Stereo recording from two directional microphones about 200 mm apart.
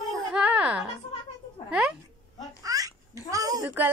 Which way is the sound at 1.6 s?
5° right (ahead or behind).